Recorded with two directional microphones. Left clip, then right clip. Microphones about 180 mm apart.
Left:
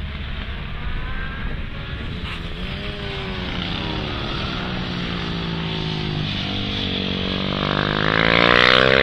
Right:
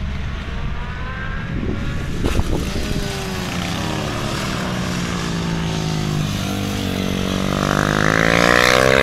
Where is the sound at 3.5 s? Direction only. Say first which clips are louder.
Right 2 dB; 50° right (ahead or behind).